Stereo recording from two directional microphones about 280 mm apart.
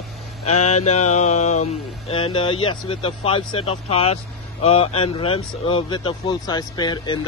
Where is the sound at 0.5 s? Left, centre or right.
Left.